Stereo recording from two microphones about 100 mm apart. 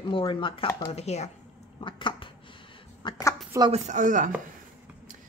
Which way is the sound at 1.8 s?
55° left (ahead or behind).